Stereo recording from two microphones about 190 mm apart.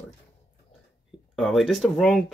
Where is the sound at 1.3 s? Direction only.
Centre (ahead or behind).